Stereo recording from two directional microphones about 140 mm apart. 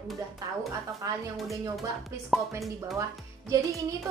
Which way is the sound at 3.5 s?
25° right (ahead or behind).